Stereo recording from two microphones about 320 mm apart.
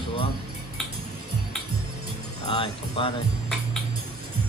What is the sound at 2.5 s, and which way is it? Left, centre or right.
Speech, centre.